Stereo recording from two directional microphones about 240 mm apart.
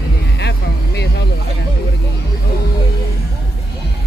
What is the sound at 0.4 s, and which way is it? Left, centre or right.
Music, left.